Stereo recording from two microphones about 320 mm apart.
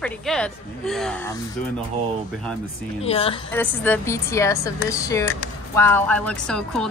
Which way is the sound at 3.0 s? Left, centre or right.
Centre.